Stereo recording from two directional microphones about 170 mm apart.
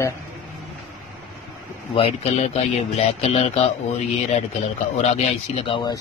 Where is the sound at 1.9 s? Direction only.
35° left (ahead or behind).